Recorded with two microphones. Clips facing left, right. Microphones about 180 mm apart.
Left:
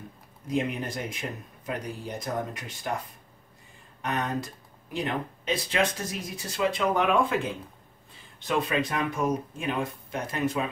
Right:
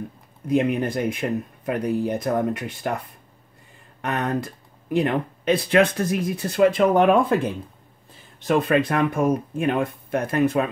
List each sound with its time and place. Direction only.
0.5 s speech: 60° right (ahead or behind)
4.0 s speech: 60° right (ahead or behind)
8.5 s speech: 55° right (ahead or behind)